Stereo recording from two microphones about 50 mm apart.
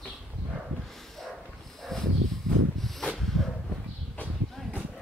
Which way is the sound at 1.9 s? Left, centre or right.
Centre.